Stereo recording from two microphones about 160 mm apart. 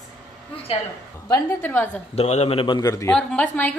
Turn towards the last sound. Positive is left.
turn(degrees=10)  # may be behind; listen again after turning